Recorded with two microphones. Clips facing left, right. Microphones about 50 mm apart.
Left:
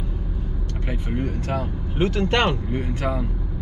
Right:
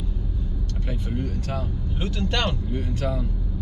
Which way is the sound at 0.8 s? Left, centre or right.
Left.